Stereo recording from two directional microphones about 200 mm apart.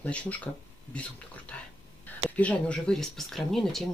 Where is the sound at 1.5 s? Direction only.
5° left (ahead or behind).